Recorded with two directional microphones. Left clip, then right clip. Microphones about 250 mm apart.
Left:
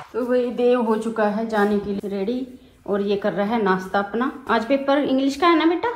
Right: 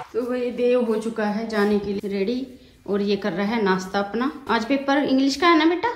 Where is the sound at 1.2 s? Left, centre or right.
Centre.